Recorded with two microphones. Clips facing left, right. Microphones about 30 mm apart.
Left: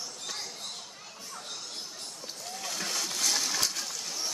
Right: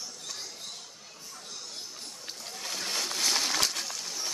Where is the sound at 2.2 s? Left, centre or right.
Right.